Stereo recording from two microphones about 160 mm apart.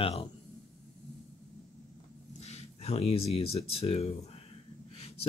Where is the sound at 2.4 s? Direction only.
40° left (ahead or behind).